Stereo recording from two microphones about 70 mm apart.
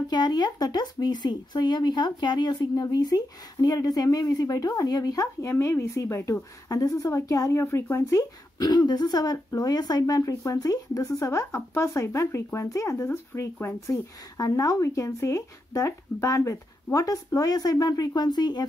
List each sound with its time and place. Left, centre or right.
0.1 s speech: left
5.5 s speech: left
6.7 s speech: left
8.2 s speech: left
14.3 s speech: left